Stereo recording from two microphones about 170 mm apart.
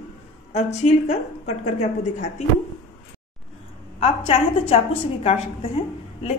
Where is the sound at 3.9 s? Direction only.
35° left (ahead or behind).